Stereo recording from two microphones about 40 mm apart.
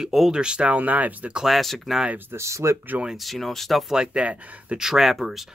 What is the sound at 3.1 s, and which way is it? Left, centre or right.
Speech, centre.